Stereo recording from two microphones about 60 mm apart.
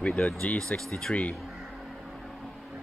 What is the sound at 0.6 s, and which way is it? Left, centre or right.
Speech, centre.